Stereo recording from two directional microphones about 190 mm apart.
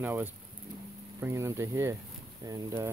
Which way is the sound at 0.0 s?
10° right (ahead or behind).